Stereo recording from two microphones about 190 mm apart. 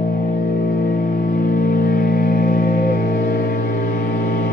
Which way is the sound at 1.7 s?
50° left (ahead or behind).